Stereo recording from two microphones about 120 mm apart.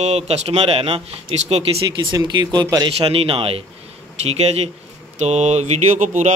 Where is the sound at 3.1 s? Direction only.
50° right (ahead or behind).